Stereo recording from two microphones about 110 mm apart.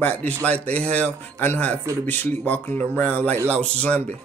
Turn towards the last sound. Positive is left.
turn(degrees=10)  # may be behind; listen again after turning